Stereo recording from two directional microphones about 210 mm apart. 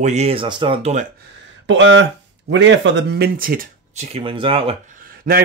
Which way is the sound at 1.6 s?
60° right (ahead or behind).